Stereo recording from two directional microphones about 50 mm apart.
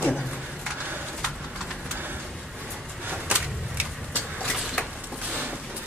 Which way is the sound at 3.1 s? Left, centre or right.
Right.